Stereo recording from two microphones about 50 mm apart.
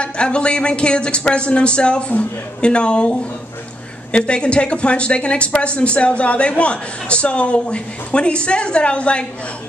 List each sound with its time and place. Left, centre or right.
0.0 s speech: left